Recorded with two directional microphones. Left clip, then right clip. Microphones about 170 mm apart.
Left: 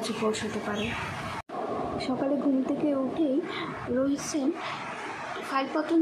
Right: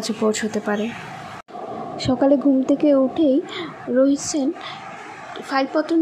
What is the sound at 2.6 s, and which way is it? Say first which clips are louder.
Speech: right 11 dB; 35° right (ahead or behind).